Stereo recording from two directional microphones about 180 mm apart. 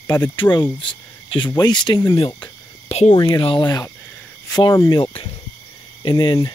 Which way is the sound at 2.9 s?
40° left (ahead or behind).